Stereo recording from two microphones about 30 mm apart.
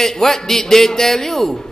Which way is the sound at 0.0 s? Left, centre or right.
Centre.